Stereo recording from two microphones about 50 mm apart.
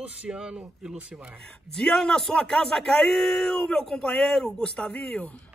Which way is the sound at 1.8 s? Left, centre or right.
Centre.